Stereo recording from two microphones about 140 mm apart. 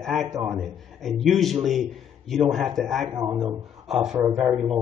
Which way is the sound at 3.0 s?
25° right (ahead or behind).